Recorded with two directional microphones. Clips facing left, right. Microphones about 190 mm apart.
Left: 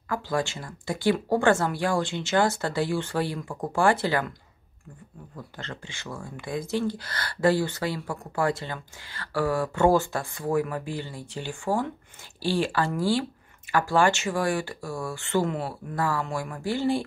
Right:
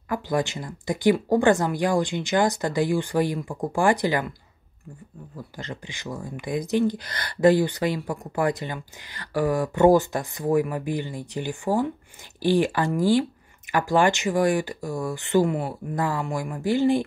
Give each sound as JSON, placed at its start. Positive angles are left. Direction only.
{"t": 0.1, "sound": "speech", "side_deg": -20}
{"t": 5.6, "sound": "speech", "side_deg": -15}